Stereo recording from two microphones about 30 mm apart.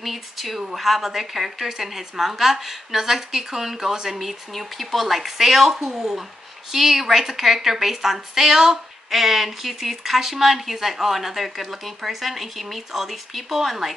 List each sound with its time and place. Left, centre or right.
0.0 s a woman's voice: centre
4.2 s a woman's voice: centre